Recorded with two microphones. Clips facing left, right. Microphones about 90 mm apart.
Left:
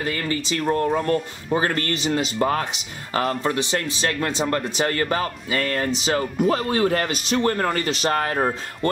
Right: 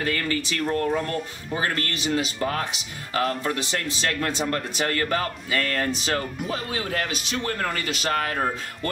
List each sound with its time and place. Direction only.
0.0 s speech: 20° left (ahead or behind)
0.7 s a man's voice: 35° left (ahead or behind)
6.4 s a man's voice: 40° left (ahead or behind)